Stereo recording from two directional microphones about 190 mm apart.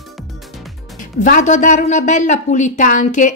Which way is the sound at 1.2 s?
40° left (ahead or behind).